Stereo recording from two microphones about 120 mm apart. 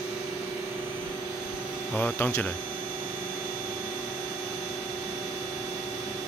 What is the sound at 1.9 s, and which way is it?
Speech, 15° left (ahead or behind).